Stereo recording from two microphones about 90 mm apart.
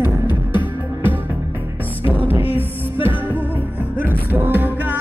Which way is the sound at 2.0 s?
25° right (ahead or behind).